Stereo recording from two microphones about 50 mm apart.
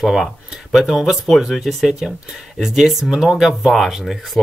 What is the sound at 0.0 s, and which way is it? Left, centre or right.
Speech, centre.